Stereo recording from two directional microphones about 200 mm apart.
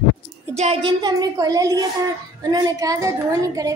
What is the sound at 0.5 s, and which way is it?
A woman's voice, 30° right (ahead or behind).